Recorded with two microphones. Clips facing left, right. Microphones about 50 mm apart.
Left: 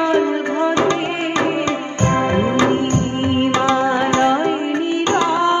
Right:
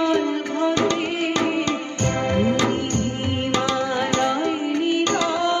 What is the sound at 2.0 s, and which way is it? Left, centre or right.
Organ, left.